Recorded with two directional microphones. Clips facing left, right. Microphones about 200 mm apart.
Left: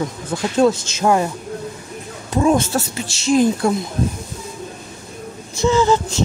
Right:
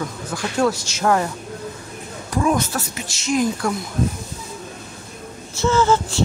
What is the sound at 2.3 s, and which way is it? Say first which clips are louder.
A woman's voice: left 4 dB; 25° left (ahead or behind).